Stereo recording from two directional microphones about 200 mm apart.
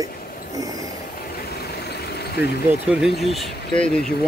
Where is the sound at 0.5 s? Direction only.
15° right (ahead or behind).